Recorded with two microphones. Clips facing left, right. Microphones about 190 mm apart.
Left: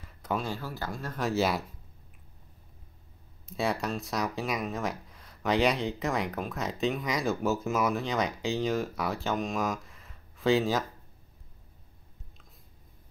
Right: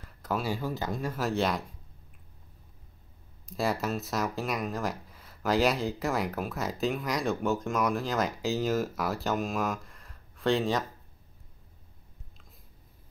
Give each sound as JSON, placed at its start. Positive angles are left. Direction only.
{"t": 0.0, "sound": "a sound", "side_deg": 0}
{"t": 0.6, "sound": "speech", "side_deg": -20}
{"t": 1.1, "sound": "speech", "side_deg": 0}
{"t": 3.4, "sound": "speech", "side_deg": 0}